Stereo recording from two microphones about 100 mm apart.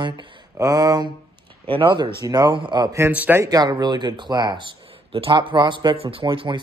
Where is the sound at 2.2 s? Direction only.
40° right (ahead or behind).